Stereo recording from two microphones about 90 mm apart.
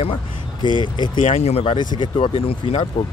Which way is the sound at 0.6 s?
55° left (ahead or behind).